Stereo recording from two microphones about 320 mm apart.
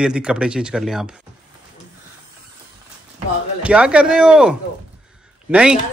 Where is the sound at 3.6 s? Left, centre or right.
Centre.